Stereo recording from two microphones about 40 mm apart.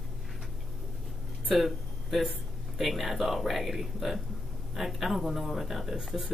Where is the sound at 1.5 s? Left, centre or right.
Centre.